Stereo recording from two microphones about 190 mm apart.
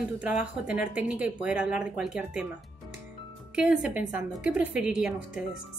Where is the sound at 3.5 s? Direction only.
5° right (ahead or behind).